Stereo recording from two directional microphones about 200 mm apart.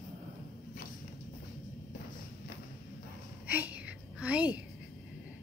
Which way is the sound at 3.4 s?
10° right (ahead or behind).